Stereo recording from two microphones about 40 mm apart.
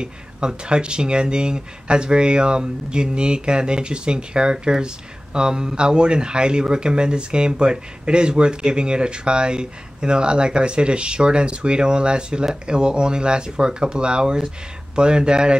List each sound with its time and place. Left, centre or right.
0.0 s speech: right